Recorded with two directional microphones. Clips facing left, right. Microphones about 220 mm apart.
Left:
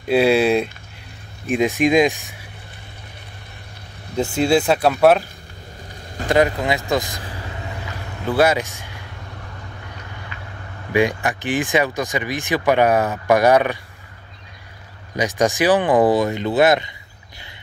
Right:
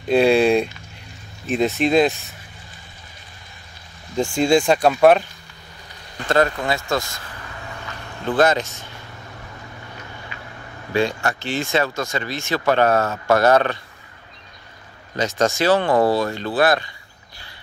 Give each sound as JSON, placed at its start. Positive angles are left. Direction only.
{"t": 0.0, "sound": "speech", "side_deg": 5}
{"t": 4.2, "sound": "speech", "side_deg": 5}
{"t": 6.2, "sound": "speech", "side_deg": 15}
{"t": 8.3, "sound": "speech", "side_deg": 10}
{"t": 10.9, "sound": "speech", "side_deg": 15}
{"t": 15.1, "sound": "speech", "side_deg": 15}